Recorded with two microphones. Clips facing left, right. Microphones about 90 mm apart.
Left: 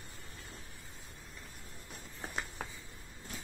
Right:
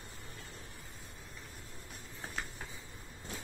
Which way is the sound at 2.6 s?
90° left.